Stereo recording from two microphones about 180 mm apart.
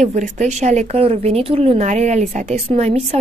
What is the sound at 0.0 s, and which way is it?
Speech, 40° right (ahead or behind).